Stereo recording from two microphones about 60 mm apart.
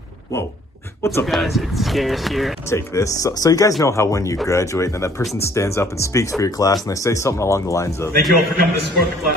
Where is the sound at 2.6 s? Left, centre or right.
Left.